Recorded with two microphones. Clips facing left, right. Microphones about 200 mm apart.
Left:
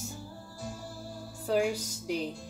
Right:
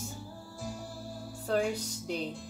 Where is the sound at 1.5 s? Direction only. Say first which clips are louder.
Left 2 dB; 5° left (ahead or behind).